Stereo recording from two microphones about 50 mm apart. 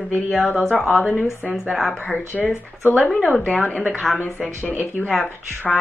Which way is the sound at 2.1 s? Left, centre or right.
Left.